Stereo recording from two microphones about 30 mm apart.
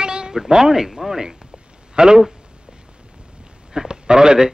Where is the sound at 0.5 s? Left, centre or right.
Right.